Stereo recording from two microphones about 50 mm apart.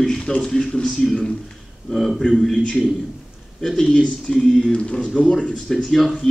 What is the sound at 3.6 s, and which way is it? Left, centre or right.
A man's voice, centre.